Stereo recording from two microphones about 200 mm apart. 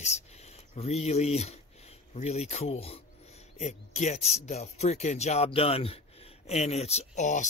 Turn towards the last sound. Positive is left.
turn(degrees=35)  # may be behind; listen again after turning